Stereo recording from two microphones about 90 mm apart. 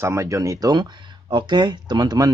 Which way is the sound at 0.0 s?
35° right (ahead or behind).